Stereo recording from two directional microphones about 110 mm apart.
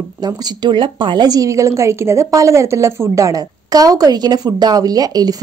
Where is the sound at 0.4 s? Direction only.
40° right (ahead or behind).